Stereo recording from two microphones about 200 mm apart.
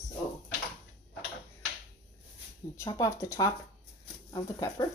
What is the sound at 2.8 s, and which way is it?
Speech, 15° left (ahead or behind).